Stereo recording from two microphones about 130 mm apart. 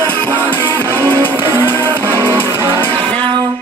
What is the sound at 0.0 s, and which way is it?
Music, 15° left (ahead or behind).